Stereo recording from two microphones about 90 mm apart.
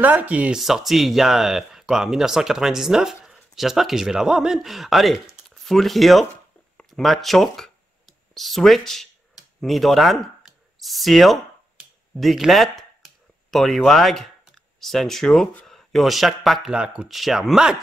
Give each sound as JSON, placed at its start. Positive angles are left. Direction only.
{"t": 0.0, "sound": "speech", "side_deg": -15}
{"t": 0.6, "sound": "speech", "side_deg": -5}
{"t": 9.6, "sound": "a sound", "side_deg": 0}
{"t": 15.6, "sound": "speech", "side_deg": 5}